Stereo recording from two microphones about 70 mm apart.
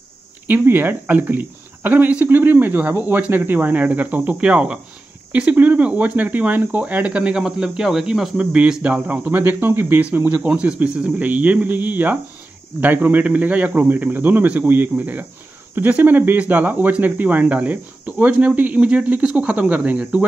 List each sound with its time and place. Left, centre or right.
0.5 s speech: right
10.5 s speech: centre